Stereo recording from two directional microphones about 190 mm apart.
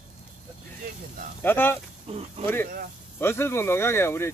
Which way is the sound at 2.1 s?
30° right (ahead or behind).